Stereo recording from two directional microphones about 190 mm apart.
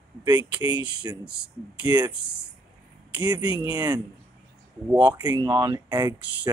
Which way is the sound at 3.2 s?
20° right (ahead or behind).